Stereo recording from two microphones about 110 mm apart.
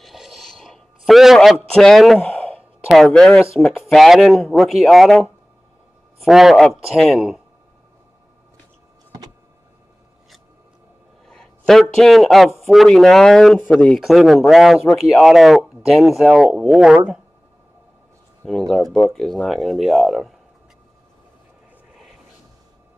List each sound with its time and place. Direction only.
0.0 s a sound: centre (ahead or behind)
2.1 s sigh: 15° left (ahead or behind)
2.9 s speech: 5° left (ahead or behind)
11.2 s a man's voice: 5° left (ahead or behind)
18.4 s speech: centre (ahead or behind)